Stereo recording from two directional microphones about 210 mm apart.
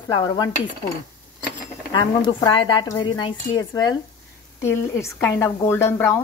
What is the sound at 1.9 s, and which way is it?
A woman's voice, 20° left (ahead or behind).